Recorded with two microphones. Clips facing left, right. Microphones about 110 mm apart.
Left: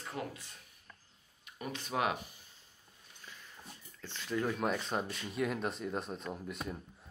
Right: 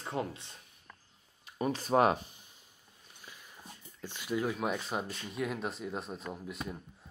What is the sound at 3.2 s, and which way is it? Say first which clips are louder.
Dog: even; 15° right (ahead or behind).